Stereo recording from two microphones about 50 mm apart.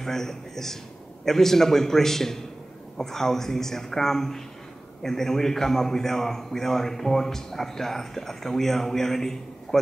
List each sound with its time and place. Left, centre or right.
0.0 s a man's voice: centre